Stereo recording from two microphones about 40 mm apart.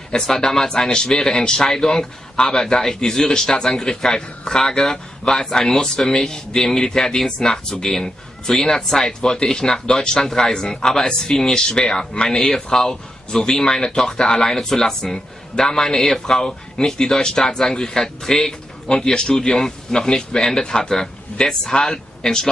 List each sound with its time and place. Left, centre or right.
0.1 s a man's voice: centre
18.9 s a man's voice: centre